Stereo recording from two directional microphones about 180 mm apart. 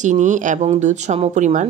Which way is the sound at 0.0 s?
40° right (ahead or behind).